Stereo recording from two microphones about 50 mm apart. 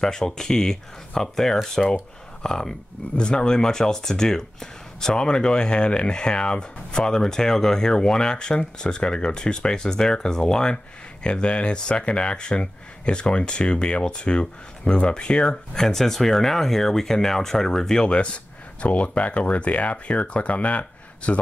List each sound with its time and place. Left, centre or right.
0.0 s speech: centre; by 21.4 s left